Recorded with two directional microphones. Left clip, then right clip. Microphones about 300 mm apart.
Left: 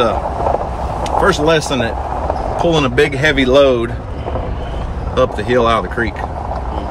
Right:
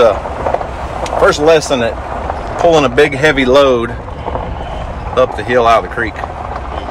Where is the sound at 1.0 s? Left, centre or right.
Centre.